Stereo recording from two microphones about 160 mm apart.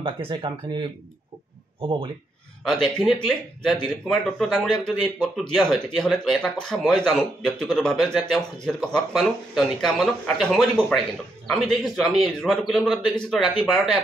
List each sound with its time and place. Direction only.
0.0 s speech: 35° right (ahead or behind)
2.6 s speech: centre (ahead or behind)